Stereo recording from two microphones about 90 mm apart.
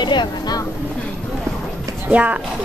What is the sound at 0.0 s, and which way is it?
Speech, 60° left (ahead or behind).